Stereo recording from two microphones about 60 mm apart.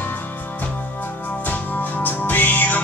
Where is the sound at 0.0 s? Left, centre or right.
Left.